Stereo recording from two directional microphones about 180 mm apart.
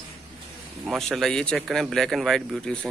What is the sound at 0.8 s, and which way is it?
Speech, centre (ahead or behind).